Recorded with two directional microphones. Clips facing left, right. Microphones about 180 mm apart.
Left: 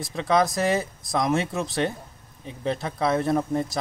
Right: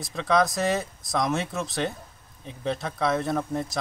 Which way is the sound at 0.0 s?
Centre (ahead or behind).